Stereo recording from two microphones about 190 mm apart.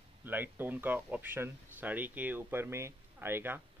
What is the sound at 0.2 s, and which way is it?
Speech, 10° right (ahead or behind).